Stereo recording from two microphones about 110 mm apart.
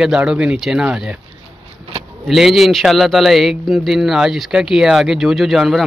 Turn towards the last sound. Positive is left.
turn(degrees=0)  # may be behind; listen again after turning